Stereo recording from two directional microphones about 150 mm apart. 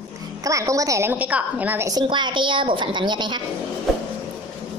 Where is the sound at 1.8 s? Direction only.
30° right (ahead or behind).